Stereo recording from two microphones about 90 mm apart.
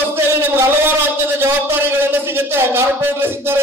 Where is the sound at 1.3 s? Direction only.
25° right (ahead or behind).